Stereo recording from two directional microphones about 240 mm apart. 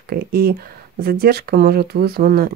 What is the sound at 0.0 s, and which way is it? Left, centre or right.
Speech, right.